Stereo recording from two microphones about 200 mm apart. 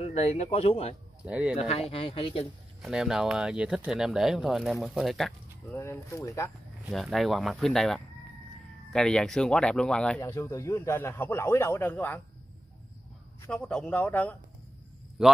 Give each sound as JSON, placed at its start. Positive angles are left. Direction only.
{"t": 0.0, "sound": "speech", "side_deg": 30}
{"t": 1.2, "sound": "speech", "side_deg": -5}
{"t": 1.6, "sound": "speech", "side_deg": 30}
{"t": 2.8, "sound": "speech", "side_deg": 0}
{"t": 5.7, "sound": "speech", "side_deg": 10}
{"t": 6.9, "sound": "speech", "side_deg": 0}
{"t": 13.5, "sound": "speech", "side_deg": 5}
{"t": 15.2, "sound": "speech", "side_deg": -5}